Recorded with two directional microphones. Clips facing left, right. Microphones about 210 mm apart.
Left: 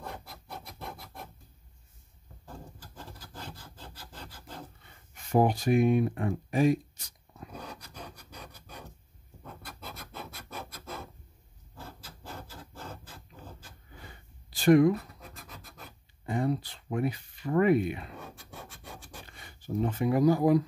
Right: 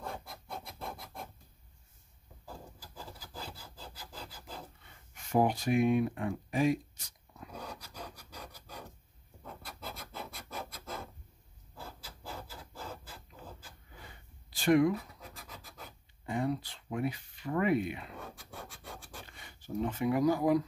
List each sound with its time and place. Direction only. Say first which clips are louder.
0.9 s scratch: even; 5° left (ahead or behind)
3.0 s wood: even; 5° right (ahead or behind)
5.3 s speech: left 4 dB; 40° left (ahead or behind)
9.4 s scratch: even; centre (ahead or behind)
12.3 s filing: left 1 dB; 5° right (ahead or behind)
14.5 s a sound: left 5 dB; 40° left (ahead or behind)
16.3 s speech: left 3 dB; 40° left (ahead or behind)
19.4 s speech: left 4 dB; 40° left (ahead or behind)